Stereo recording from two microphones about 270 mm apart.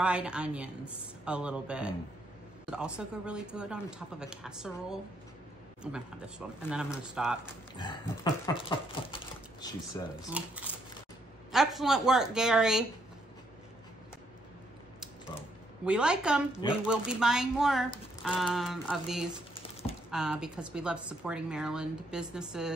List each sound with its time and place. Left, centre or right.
0.0 s speech: centre
7.4 s a sound: centre
9.9 s speech: centre
10.3 s speech: centre
15.8 s speech: centre